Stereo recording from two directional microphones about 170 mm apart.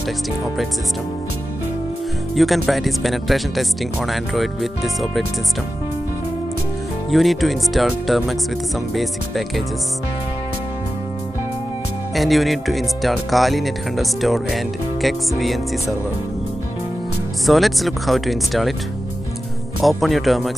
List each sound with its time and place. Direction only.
2.3 s speech: centre (ahead or behind)
7.1 s speech: centre (ahead or behind)
12.2 s speech: centre (ahead or behind)
17.5 s speech: centre (ahead or behind)
19.8 s speech: centre (ahead or behind)